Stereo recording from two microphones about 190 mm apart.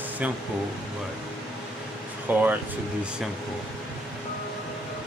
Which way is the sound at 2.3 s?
10° right (ahead or behind).